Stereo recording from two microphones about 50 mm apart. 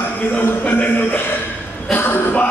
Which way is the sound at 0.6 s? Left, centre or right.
Left.